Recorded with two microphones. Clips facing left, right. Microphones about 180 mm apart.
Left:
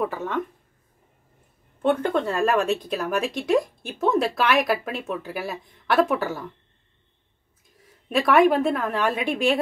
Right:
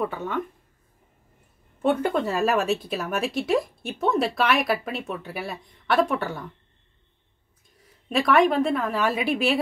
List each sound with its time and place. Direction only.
0.0 s speech: centre (ahead or behind)
1.8 s speech: 10° right (ahead or behind)
7.8 s speech: centre (ahead or behind)